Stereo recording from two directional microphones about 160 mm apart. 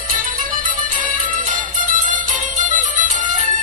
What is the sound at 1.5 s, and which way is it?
Music, 55° right (ahead or behind).